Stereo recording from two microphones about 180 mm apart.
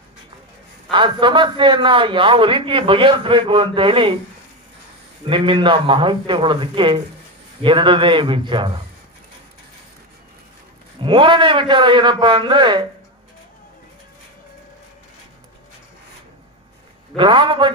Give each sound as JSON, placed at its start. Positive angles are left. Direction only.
{"t": 0.9, "sound": "a man's voice", "side_deg": -25}
{"t": 5.2, "sound": "a man's voice", "side_deg": -30}
{"t": 11.0, "sound": "a man's voice", "side_deg": -25}
{"t": 17.2, "sound": "a man's voice", "side_deg": -25}